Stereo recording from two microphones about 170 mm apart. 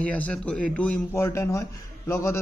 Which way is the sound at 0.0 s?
10° left (ahead or behind).